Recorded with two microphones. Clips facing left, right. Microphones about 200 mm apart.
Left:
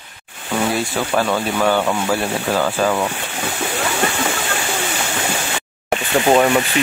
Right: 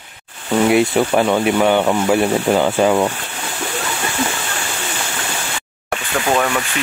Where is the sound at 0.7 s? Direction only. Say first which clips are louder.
Right 9 dB; 20° right (ahead or behind).